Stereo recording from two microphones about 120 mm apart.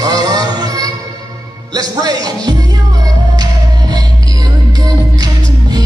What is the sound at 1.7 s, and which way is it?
Speech, 35° right (ahead or behind).